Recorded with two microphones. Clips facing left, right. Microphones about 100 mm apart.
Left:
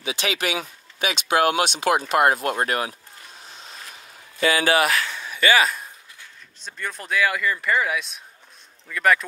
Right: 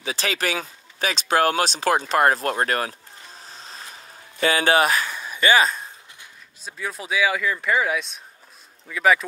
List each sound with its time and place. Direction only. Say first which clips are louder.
0.0 s speech: even; 35° right (ahead or behind)
4.9 s a sound: right 1 dB; 20° right (ahead or behind)
5.4 s speech: right 1 dB; 30° right (ahead or behind)
6.6 s speech: right 1 dB; 5° right (ahead or behind)